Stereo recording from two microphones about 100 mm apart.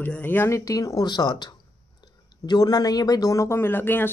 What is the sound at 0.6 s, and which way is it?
Speech, 35° left (ahead or behind).